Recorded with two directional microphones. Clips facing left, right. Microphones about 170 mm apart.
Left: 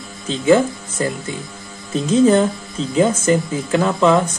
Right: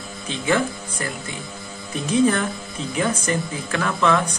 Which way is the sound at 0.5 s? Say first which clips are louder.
Left 8 dB; 25° left (ahead or behind).